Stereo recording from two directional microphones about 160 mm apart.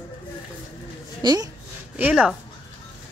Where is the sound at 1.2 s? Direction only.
25° right (ahead or behind).